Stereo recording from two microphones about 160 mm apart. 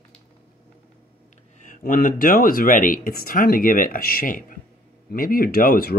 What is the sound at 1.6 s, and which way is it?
Speech, 60° left (ahead or behind).